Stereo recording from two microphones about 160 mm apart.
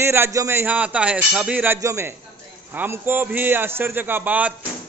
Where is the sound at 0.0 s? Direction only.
15° right (ahead or behind).